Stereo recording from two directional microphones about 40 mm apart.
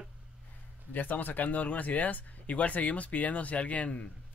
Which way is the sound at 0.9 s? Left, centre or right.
Left.